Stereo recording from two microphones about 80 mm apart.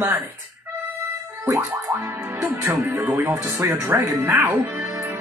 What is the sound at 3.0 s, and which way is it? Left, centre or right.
Music, right.